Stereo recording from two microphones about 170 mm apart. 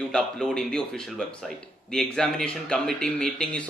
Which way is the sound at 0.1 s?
5° left (ahead or behind).